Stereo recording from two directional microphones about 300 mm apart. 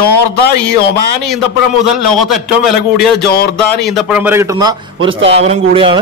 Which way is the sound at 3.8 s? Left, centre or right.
Centre.